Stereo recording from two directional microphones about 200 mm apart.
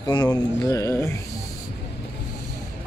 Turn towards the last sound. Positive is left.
turn(degrees=15)  # may be behind; listen again after turning